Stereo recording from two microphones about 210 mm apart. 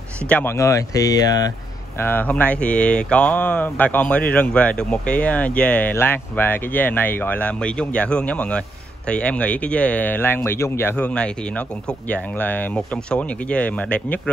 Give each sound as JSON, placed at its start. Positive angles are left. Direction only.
{"t": 0.3, "sound": "speech", "side_deg": 10}